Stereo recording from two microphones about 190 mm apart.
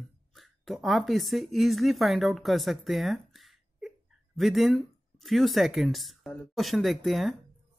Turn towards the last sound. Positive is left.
turn(degrees=0)  # may be behind; listen again after turning